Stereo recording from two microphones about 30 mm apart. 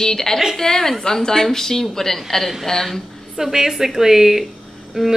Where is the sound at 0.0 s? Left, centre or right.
Centre.